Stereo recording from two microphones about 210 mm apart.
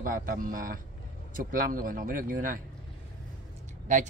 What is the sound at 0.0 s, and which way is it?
Speech, 45° right (ahead or behind).